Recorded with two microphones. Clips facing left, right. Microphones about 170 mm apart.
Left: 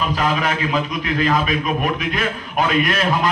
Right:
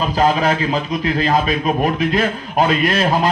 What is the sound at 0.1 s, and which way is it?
Speech, 30° right (ahead or behind).